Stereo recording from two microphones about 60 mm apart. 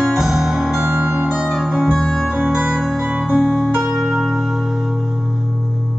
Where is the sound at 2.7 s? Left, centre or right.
Centre.